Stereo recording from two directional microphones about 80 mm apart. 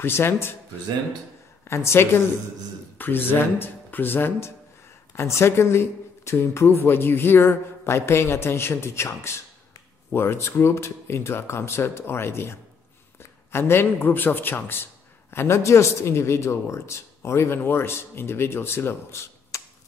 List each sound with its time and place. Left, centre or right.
0.0 s speech: left
1.6 s a man's voice: left